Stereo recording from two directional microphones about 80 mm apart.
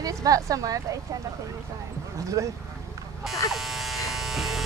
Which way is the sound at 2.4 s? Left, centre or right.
Right.